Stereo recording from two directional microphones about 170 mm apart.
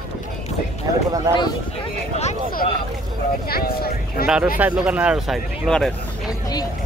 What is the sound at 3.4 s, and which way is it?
Speech, 65° left (ahead or behind).